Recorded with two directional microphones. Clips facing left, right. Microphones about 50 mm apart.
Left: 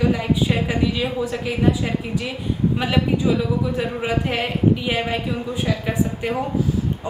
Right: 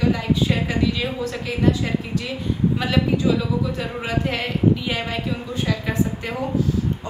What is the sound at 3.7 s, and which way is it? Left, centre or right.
A woman's voice, centre.